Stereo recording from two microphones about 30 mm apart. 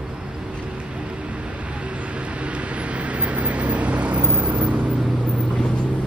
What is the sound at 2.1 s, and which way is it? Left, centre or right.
Vehicle, right.